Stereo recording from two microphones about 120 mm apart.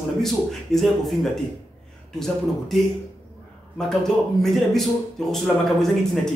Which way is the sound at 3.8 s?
5° left (ahead or behind).